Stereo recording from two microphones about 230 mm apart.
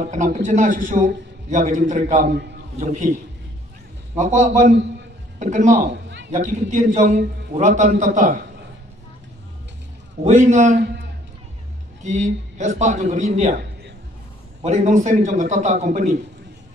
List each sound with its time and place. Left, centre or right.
0.0 s a man's voice: right
4.2 s a man's voice: right
5.9 s a man's voice: right
6.3 s a man's voice: right
10.2 s a man's voice: right
12.0 s a man's voice: right
14.6 s a man's voice: right